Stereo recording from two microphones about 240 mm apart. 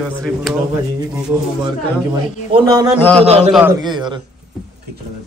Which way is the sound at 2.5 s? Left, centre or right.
Centre.